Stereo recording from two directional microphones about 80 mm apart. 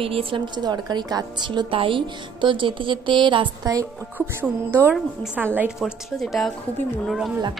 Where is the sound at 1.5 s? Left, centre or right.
Right.